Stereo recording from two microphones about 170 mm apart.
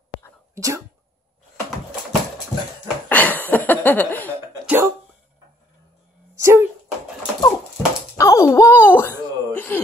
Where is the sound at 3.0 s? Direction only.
10° left (ahead or behind).